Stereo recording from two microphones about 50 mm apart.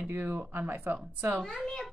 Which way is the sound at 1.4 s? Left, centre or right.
Centre.